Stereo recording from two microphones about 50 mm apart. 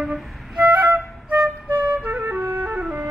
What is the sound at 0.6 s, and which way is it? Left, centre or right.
Flute, right.